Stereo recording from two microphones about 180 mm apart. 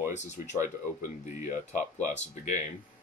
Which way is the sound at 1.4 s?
45° left (ahead or behind).